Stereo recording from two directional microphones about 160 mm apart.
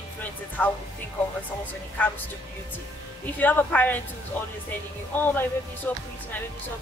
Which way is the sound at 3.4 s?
10° left (ahead or behind).